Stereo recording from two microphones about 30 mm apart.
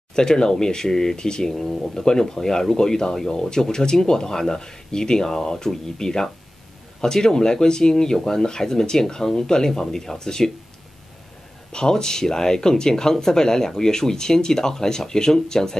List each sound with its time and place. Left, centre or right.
0.1 s speech: left
11.7 s speech: left